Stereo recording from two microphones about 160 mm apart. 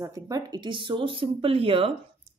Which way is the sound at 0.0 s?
20° right (ahead or behind).